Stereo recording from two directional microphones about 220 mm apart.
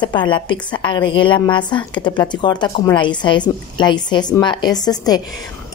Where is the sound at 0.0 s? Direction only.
20° left (ahead or behind).